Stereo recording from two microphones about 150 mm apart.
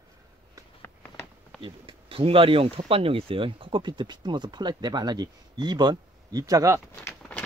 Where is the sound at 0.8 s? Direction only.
15° left (ahead or behind).